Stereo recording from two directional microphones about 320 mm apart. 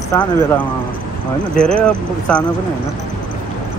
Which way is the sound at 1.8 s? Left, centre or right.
Centre.